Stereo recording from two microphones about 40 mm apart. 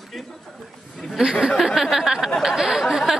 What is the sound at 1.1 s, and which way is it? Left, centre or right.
Speech, centre.